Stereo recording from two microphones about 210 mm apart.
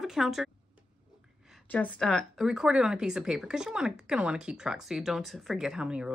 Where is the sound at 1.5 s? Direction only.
5° left (ahead or behind).